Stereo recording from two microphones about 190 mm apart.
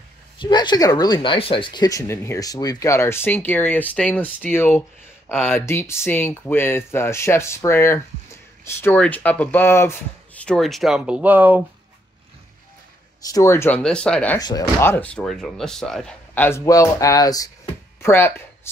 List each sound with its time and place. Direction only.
0.4 s speech: 25° left (ahead or behind); by 11.6 s 10° right (ahead or behind)
13.3 s speech: 15° left (ahead or behind)